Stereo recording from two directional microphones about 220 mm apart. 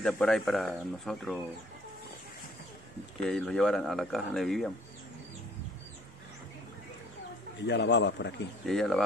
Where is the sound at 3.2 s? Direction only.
5° left (ahead or behind).